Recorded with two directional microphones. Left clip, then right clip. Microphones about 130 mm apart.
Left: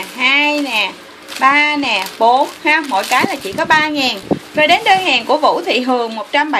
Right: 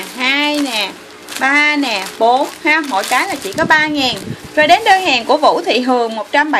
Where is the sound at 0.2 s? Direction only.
10° right (ahead or behind).